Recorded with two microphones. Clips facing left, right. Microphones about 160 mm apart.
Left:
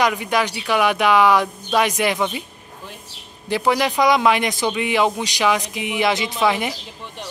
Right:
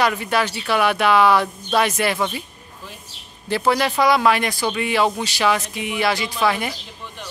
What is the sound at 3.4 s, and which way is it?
Speech, 15° left (ahead or behind).